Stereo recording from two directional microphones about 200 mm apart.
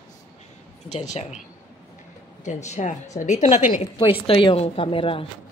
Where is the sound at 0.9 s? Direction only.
35° left (ahead or behind).